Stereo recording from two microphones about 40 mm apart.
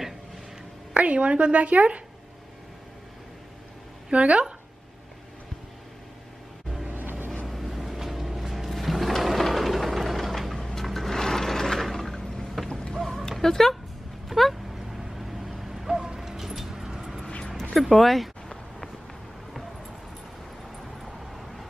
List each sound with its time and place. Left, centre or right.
0.9 s a woman's voice: right
4.3 s speech: right
6.9 s vehicle: right
7.4 s music: centre
12.9 s a sound: centre
13.4 s speech: centre
14.3 s a sound: centre
17.7 s speech: centre